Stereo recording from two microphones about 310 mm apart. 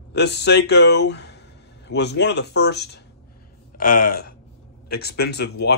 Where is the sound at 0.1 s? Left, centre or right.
Left.